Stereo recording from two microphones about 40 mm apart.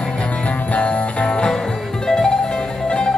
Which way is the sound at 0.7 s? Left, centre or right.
Left.